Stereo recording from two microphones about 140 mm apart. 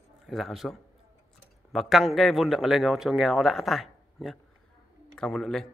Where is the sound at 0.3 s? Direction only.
Centre (ahead or behind).